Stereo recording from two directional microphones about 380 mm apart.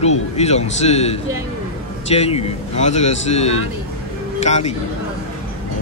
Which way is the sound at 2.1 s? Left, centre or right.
Centre.